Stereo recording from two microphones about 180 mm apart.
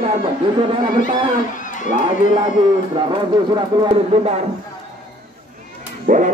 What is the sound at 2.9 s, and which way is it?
Speech, 25° right (ahead or behind).